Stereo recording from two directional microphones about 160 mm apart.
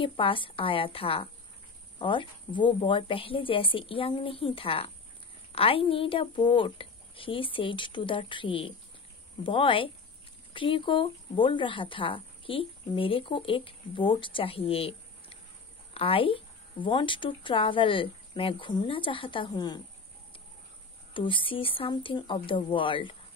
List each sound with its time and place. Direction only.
0.0 s speech: 35° left (ahead or behind)
21.1 s speech: 30° left (ahead or behind)